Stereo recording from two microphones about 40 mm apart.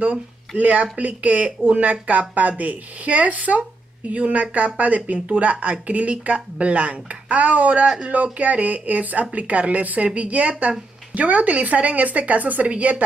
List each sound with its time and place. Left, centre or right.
0.6 s speech: right